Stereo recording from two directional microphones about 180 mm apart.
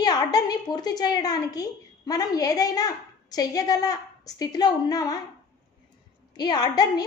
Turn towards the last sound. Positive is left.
turn(degrees=20)  # may be behind; listen again after turning